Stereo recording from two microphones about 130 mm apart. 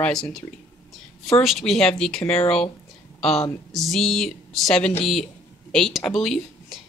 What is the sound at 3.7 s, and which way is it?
Speech, centre (ahead or behind).